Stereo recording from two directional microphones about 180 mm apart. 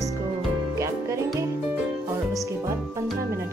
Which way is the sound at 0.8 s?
15° right (ahead or behind).